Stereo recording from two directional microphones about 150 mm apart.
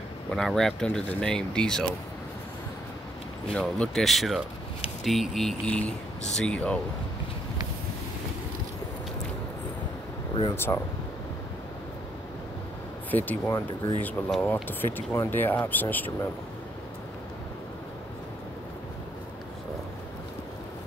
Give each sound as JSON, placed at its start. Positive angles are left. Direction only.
{"t": 0.3, "sound": "speech", "side_deg": 5}
{"t": 3.5, "sound": "speech", "side_deg": 10}
{"t": 10.5, "sound": "speech", "side_deg": 15}
{"t": 13.1, "sound": "speech", "side_deg": 10}